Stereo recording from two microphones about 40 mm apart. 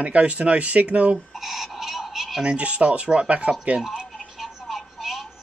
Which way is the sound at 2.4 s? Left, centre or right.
Right.